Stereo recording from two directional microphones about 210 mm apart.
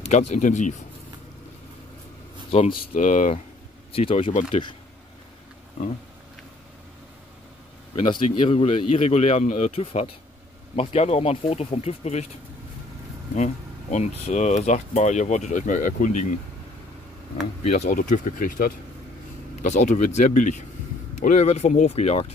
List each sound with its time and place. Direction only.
0.1 s speech: 35° left (ahead or behind)
2.7 s speech: 40° left (ahead or behind)
5.8 s speech: 25° left (ahead or behind)
7.9 s speech: 25° left (ahead or behind)
13.3 s speech: 35° left (ahead or behind)
17.6 s speech: 35° left (ahead or behind)